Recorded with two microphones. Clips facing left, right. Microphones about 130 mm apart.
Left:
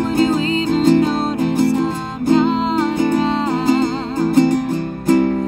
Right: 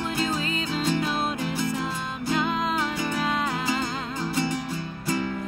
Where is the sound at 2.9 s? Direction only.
45° left (ahead or behind).